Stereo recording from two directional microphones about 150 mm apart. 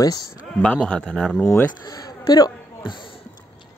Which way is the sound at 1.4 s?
15° left (ahead or behind).